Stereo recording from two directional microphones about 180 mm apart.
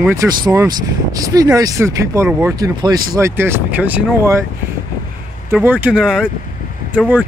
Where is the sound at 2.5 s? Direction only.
20° right (ahead or behind).